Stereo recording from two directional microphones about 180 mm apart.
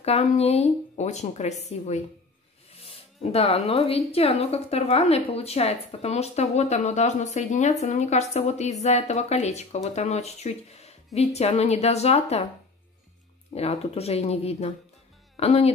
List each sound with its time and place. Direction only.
0.0 s speech: 35° left (ahead or behind)
13.6 s speech: 35° left (ahead or behind)